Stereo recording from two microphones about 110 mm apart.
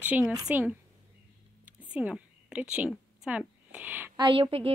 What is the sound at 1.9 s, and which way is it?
A woman's voice, 10° right (ahead or behind).